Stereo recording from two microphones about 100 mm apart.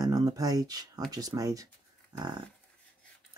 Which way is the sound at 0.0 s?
40° right (ahead or behind).